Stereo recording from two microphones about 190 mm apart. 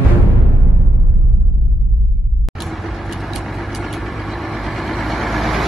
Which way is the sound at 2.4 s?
Centre (ahead or behind).